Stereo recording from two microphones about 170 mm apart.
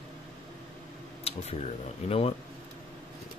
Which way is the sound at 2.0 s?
40° left (ahead or behind).